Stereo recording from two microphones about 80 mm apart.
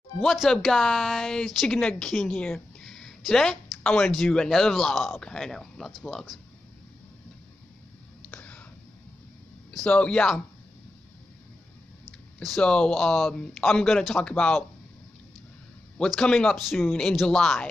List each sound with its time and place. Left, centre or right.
0.2 s speech: centre
2.3 s a sound: centre
4.2 s speech: centre
8.3 s a sound: centre
9.8 s speech: centre
12.4 s speech: centre
12.6 s speech: centre
16.2 s speech: centre